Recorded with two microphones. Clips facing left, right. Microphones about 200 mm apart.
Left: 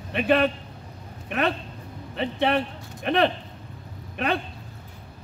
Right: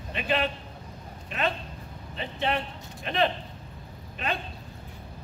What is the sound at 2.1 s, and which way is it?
Speech, 60° left (ahead or behind).